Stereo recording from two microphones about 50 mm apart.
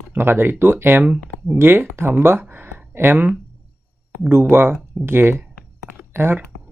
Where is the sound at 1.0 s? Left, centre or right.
Right.